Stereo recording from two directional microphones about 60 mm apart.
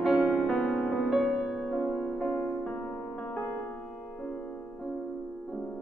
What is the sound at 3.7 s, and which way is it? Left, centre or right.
Music, centre.